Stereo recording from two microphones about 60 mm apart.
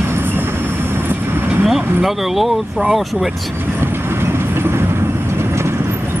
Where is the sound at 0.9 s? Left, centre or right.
Right.